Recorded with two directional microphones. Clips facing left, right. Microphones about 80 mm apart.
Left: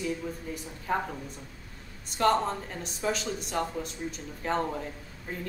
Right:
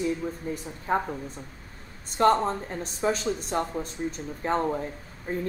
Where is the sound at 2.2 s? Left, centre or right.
Right.